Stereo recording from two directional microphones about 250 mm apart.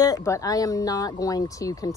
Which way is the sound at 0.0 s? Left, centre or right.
Centre.